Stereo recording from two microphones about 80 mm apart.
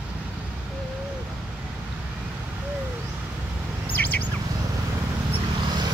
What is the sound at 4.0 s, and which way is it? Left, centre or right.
Bird, left.